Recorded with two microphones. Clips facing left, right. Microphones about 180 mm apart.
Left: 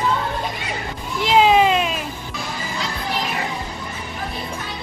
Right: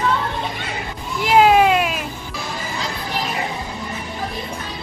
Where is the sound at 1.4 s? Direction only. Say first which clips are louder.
Right 2 dB; 5° right (ahead or behind).